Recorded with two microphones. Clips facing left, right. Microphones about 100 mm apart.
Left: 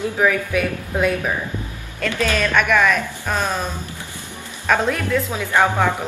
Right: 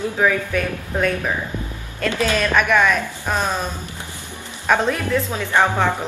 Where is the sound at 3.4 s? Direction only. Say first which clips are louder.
Even; 15° right (ahead or behind).